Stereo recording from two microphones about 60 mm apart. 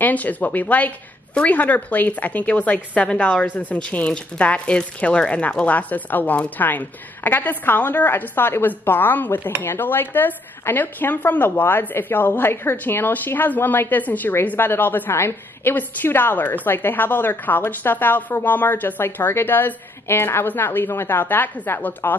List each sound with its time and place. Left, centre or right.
0.0 s a woman's voice: left